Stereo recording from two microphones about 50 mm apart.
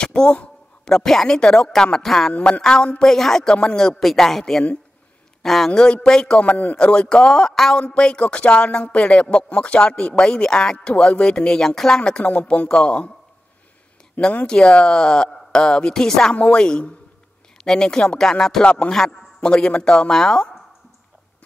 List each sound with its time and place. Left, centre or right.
0.0 s speech: centre
2.3 s speech: left
2.6 s a man's voice: centre
6.4 s a man's voice: left
6.8 s speech: centre
14.4 s speech: centre
18.6 s speech: left